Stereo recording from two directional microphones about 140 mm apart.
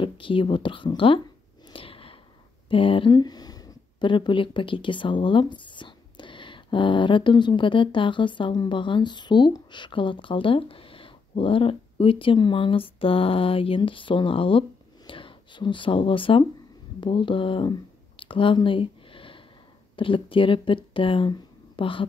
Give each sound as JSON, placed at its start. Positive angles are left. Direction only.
{"t": 0.0, "sound": "a woman's voice", "side_deg": 35}
{"t": 1.7, "sound": "a sound", "side_deg": 40}
{"t": 2.7, "sound": "speech", "side_deg": 40}